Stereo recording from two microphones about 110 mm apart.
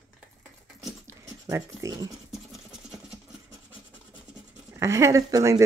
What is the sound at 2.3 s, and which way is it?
Engine, 5° right (ahead or behind).